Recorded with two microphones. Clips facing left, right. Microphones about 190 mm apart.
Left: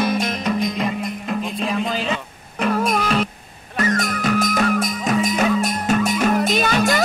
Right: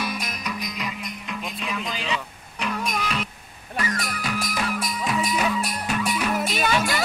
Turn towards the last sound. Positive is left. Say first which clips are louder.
# left 5 dB
turn(degrees=45)  # may be behind; listen again after turning